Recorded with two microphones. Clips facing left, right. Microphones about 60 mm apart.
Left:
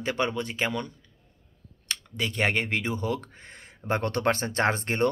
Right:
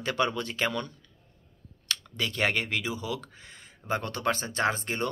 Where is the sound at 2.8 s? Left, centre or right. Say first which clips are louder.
Left 4 dB; left.